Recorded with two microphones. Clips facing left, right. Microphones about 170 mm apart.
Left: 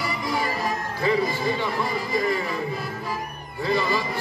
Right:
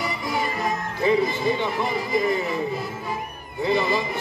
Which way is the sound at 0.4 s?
20° right (ahead or behind).